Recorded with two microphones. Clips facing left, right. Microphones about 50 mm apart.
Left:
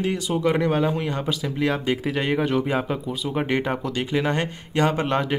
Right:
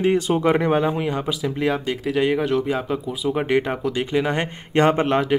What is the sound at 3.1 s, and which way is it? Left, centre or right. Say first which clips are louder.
Speech: right 5 dB; centre.